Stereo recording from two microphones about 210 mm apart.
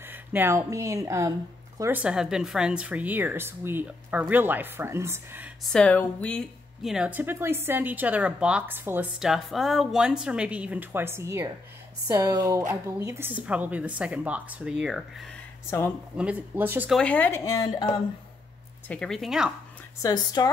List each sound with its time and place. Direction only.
0.0 s speech: 10° right (ahead or behind)
5.6 s speech: 5° left (ahead or behind)
17.0 s speech: 10° left (ahead or behind)
18.9 s speech: 5° left (ahead or behind)
20.0 s a woman's voice: 20° left (ahead or behind)